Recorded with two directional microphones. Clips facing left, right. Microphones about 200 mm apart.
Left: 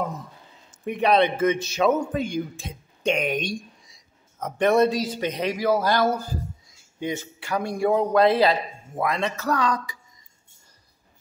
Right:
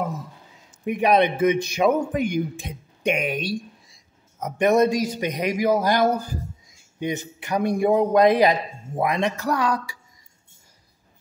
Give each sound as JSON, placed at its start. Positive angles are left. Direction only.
{"t": 0.8, "sound": "a man's voice", "side_deg": -10}